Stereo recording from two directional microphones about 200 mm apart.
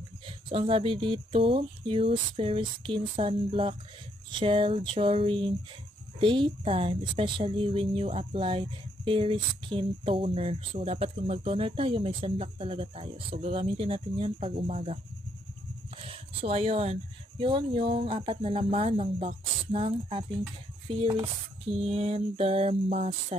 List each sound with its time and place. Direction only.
0.5 s a woman's voice: 30° right (ahead or behind)
16.1 s a woman's voice: 30° right (ahead or behind)
21.8 s music: 30° right (ahead or behind)